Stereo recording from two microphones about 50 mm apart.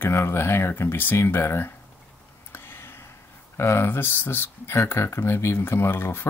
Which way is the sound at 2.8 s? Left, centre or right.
Left.